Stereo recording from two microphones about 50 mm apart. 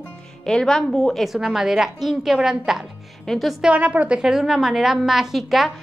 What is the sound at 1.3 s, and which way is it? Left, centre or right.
A woman's voice, centre.